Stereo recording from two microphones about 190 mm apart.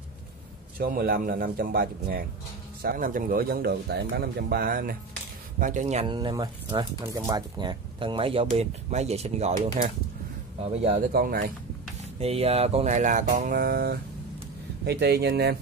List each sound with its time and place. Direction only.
0.7 s speech: 55° right (ahead or behind); by 6.1 s 35° right (ahead or behind)
6.1 s speech: 20° right (ahead or behind)
11.1 s speech: 50° right (ahead or behind)
12.2 s speech: 30° right (ahead or behind); by 15.5 s 60° right (ahead or behind)